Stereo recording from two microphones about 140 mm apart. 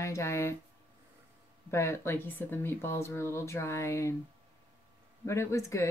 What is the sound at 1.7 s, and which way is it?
Speech, 20° left (ahead or behind).